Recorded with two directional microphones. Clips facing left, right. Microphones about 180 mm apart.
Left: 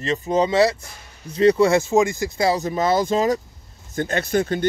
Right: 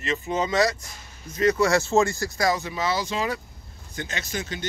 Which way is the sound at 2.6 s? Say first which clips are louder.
Left 7 dB; 45° left (ahead or behind).